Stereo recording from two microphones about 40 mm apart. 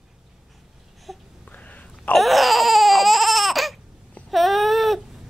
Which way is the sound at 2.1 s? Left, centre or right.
Centre.